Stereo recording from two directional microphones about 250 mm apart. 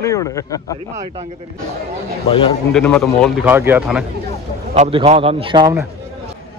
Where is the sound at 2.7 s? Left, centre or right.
Centre.